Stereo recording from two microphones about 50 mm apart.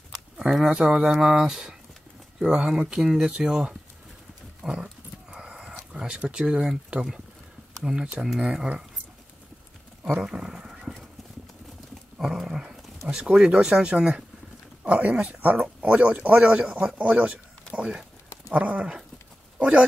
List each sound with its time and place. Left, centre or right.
0.4 s speech: centre
0.7 s a man's voice: right
5.3 s a sound: centre
6.9 s speech: right
7.8 s speech: centre
10.2 s horse: centre
11.9 s a man's voice: centre; by 18.9 s right